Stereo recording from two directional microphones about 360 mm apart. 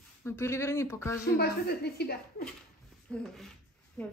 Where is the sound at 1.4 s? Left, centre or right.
Left.